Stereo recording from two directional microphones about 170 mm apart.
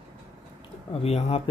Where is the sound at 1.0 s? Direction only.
35° left (ahead or behind).